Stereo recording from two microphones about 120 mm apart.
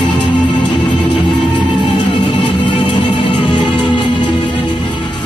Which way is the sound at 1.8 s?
40° left (ahead or behind).